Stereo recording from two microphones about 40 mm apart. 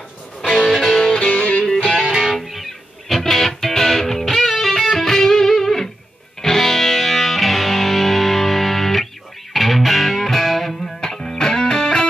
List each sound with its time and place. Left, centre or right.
0.4 s music: centre
1.3 s music: left
2.0 s music: centre